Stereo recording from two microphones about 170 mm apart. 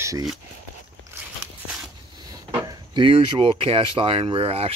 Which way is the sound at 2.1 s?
20° right (ahead or behind).